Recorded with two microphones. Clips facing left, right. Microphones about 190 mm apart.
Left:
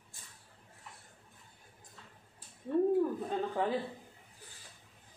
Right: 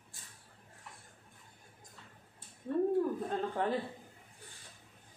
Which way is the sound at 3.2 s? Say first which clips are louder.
Left 1 dB; 5° left (ahead or behind).